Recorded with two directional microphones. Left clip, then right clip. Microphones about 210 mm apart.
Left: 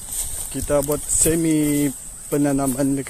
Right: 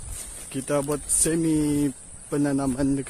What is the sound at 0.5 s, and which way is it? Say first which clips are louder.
Speech: left 5 dB; 20° right (ahead or behind).